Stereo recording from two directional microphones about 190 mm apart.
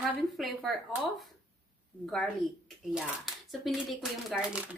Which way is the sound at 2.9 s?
Centre (ahead or behind).